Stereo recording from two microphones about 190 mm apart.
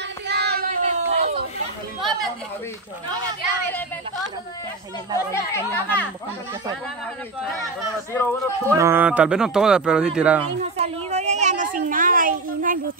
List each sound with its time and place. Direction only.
0.3 s child singing: 60° right (ahead or behind)
0.7 s a sound: 35° right (ahead or behind)
5.1 s speech: 15° left (ahead or behind)
8.1 s speech: 15° left (ahead or behind)
8.7 s speech: 10° right (ahead or behind)
10.6 s a sound: 35° right (ahead or behind)